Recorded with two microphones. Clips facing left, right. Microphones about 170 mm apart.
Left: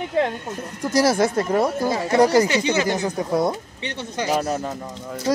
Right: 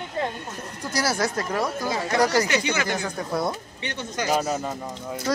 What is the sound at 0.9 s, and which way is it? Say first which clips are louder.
Speech: left 7 dB; 25° left (ahead or behind).